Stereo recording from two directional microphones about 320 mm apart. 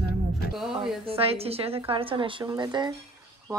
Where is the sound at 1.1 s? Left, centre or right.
Centre.